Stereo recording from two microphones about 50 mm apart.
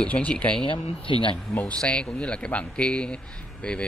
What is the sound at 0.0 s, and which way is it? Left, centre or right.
Speech, left.